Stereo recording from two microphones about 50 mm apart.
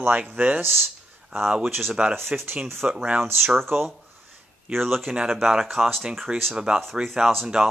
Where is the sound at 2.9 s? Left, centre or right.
Right.